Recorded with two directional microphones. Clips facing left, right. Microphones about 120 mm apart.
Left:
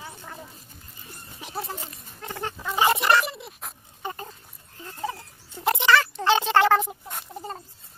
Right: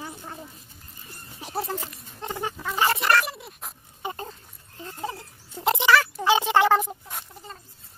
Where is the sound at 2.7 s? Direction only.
20° left (ahead or behind).